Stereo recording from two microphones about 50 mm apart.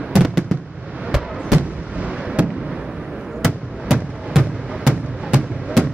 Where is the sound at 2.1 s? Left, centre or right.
Centre.